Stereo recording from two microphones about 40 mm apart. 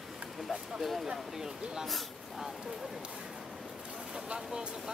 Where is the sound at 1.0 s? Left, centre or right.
Centre.